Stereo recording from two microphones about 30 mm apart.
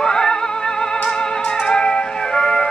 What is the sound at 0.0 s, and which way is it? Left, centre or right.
Music, left.